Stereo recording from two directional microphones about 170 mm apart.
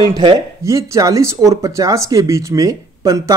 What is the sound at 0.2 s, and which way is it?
Speech, 20° right (ahead or behind).